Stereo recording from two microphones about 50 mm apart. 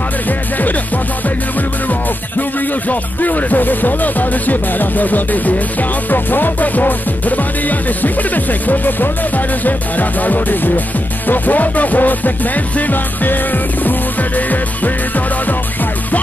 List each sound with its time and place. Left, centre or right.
2.9 s music: left